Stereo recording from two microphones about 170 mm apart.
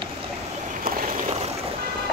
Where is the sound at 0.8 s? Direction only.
40° right (ahead or behind).